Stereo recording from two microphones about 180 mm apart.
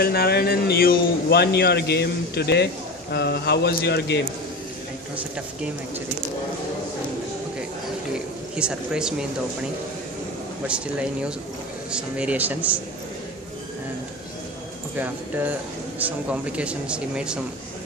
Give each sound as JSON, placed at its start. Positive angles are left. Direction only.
{"t": 0.0, "sound": "a man's voice", "side_deg": 60}
{"t": 8.5, "sound": "speech", "side_deg": -5}
{"t": 10.7, "sound": "speech", "side_deg": -5}
{"t": 15.0, "sound": "speech", "side_deg": -10}